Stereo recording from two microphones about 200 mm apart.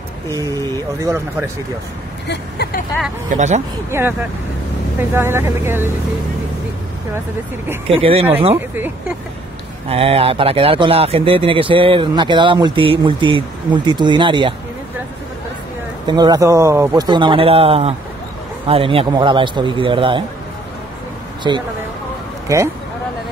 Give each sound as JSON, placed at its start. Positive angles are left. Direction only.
{"t": 0.5, "sound": "speech", "side_deg": -15}
{"t": 2.2, "sound": "speech", "side_deg": 55}
{"t": 3.3, "sound": "speech", "side_deg": -35}
{"t": 3.9, "sound": "speech", "side_deg": -15}
{"t": 5.1, "sound": "speech", "side_deg": -10}
{"t": 8.0, "sound": "speech", "side_deg": -30}
{"t": 8.5, "sound": "speech", "side_deg": -10}
{"t": 9.8, "sound": "speech", "side_deg": -30}
{"t": 16.1, "sound": "speech", "side_deg": -20}
{"t": 21.4, "sound": "speech", "side_deg": -25}